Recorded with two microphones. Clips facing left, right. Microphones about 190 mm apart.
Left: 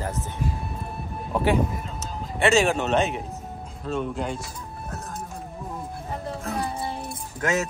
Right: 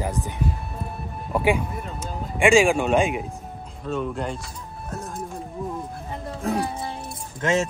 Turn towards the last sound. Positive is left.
turn(degrees=-25)  # may be behind; listen again after turning